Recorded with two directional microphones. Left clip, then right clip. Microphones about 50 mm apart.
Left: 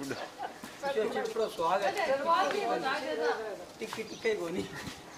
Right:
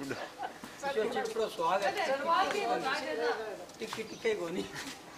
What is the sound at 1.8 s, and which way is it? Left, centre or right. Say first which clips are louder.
A woman's voice: left 2 dB; right.